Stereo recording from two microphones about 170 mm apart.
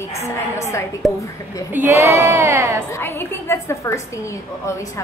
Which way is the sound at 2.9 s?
15° left (ahead or behind).